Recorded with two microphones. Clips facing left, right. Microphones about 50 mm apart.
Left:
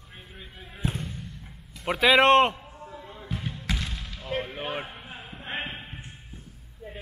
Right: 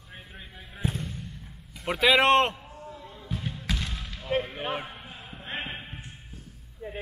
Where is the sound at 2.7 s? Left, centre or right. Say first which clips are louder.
Left 1 dB; centre.